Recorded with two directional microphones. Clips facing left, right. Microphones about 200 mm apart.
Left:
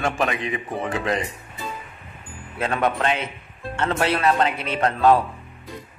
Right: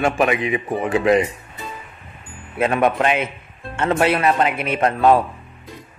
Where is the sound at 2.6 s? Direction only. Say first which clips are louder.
Right 5 dB; 15° right (ahead or behind).